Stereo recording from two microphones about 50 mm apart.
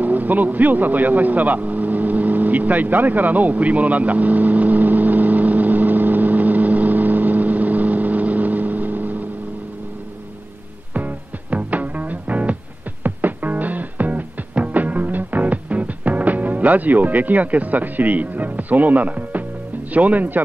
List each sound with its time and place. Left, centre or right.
0.0 s vehicle: right
10.9 s music: right
19.9 s speech: right